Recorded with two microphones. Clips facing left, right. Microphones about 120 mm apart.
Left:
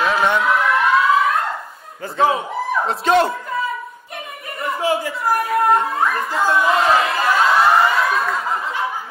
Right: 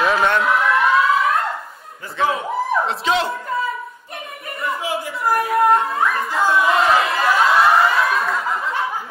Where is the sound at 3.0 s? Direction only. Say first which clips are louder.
Left 5 dB; 55° left (ahead or behind).